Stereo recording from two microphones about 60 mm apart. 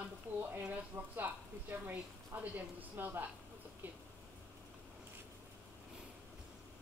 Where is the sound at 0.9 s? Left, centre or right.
Right.